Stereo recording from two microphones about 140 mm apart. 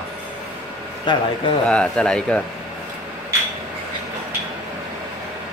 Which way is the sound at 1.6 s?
5° left (ahead or behind).